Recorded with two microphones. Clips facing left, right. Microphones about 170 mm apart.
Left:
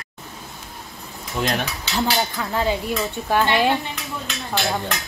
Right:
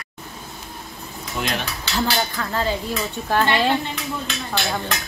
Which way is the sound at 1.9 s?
15° left (ahead or behind).